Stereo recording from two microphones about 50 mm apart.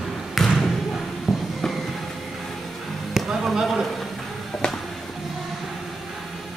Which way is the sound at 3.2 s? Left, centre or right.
Centre.